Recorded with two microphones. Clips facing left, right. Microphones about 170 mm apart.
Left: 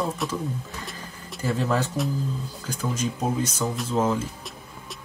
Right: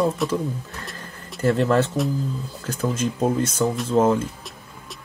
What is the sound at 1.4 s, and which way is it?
Speech, 70° right (ahead or behind).